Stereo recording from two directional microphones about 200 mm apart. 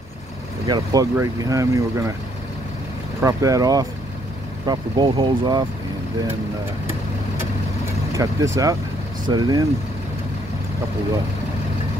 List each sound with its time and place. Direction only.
0.7 s speech: 20° right (ahead or behind)
3.2 s speech: 15° right (ahead or behind)
8.1 s speech: 15° right (ahead or behind)